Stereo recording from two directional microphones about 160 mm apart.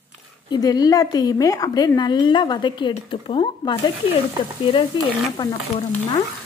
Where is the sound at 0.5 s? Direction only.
25° left (ahead or behind).